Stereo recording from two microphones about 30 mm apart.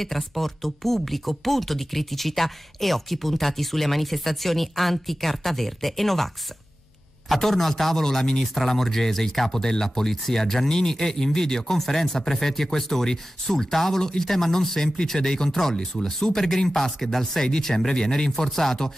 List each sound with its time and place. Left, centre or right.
0.0 s speech: centre; by 18.3 s left
18.3 s speech: centre